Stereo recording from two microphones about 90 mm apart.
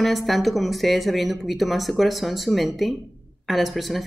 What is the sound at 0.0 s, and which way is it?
Speech, centre (ahead or behind).